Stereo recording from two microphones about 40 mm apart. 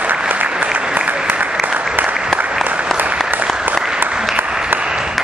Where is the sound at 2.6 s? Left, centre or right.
Right.